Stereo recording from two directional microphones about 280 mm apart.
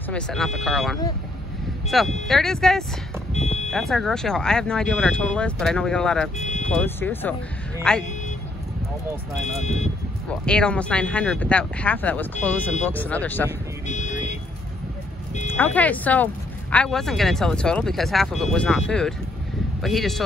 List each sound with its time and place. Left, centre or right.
0.1 s speech: centre
3.3 s vehicle: left
3.7 s speech: centre
6.3 s speech: left
6.7 s speech: centre
10.4 s speech: centre
13.8 s car alarm: left
15.5 s speech: centre